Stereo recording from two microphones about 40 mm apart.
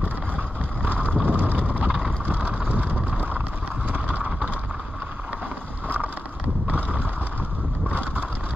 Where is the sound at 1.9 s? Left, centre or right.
Right.